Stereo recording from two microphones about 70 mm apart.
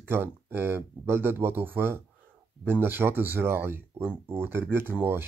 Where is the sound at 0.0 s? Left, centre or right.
Right.